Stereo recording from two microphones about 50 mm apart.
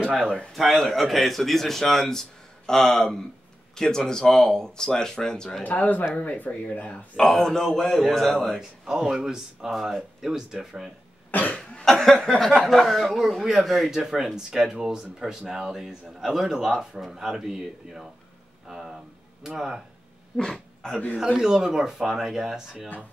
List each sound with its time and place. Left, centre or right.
0.5 s a man's voice: centre
5.6 s speech: left
7.2 s speech: centre
8.5 s speech: centre
11.3 s speech: left
11.8 s speech: centre
20.3 s speech: centre
21.4 s speech: centre